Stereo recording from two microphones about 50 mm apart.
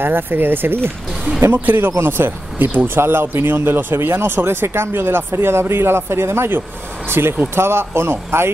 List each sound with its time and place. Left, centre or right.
0.0 s speech: right
3.0 s speech: right